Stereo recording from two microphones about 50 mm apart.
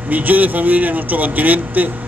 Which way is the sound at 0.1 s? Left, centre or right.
Right.